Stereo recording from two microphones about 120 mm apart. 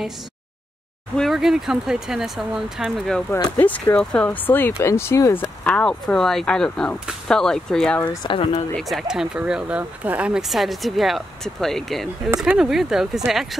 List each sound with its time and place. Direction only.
1.1 s speech: centre (ahead or behind)
3.5 s speech: 15° left (ahead or behind)
8.2 s speech: 45° left (ahead or behind)
8.7 s speech: centre (ahead or behind)